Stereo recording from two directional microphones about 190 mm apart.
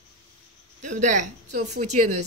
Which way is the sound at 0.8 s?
40° right (ahead or behind).